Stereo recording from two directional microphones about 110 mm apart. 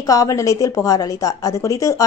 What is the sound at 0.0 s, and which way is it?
A woman's voice, 30° left (ahead or behind).